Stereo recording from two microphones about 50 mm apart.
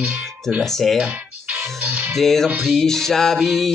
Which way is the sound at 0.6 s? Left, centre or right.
Centre.